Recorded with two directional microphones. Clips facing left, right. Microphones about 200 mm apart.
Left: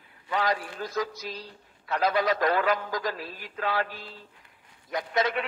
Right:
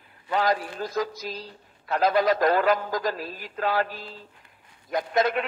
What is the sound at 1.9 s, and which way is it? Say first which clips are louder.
A man's voice: right 4 dB; 40° right (ahead or behind).